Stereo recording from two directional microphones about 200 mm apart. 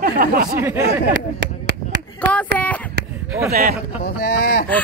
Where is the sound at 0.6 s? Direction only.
10° right (ahead or behind).